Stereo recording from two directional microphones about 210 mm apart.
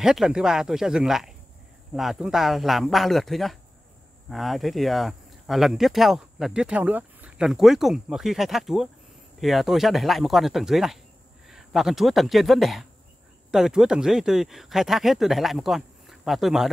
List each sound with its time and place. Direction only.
0.0 s speech: centre (ahead or behind)